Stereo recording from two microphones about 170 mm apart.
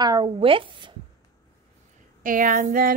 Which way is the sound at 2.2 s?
50° right (ahead or behind).